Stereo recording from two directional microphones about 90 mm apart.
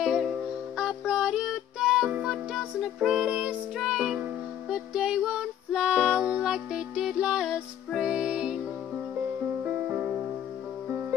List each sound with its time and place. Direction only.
0.0 s music: 5° right (ahead or behind)
9.7 s music: 20° right (ahead or behind)